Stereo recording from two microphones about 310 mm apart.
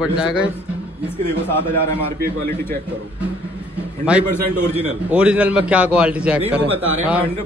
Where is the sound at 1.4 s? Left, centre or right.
Centre.